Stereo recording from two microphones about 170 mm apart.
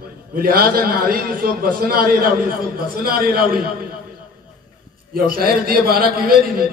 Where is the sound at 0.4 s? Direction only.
60° right (ahead or behind).